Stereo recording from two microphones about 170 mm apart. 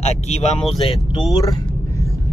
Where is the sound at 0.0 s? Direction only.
40° left (ahead or behind).